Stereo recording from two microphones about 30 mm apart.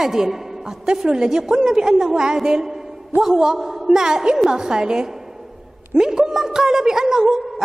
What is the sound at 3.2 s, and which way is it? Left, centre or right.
Speech, centre.